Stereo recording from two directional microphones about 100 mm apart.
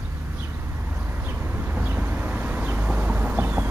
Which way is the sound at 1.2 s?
20° right (ahead or behind).